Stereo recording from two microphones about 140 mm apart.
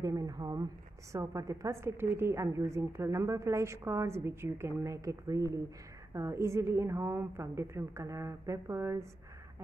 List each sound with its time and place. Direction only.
0.0 s a woman's voice: 25° right (ahead or behind)